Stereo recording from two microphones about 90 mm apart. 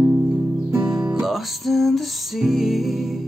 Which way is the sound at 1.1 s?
5° right (ahead or behind).